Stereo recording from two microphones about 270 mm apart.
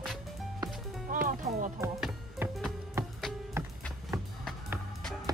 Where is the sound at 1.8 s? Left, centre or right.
Centre.